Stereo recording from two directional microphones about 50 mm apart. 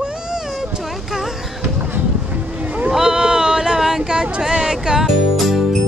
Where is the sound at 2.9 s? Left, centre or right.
Centre.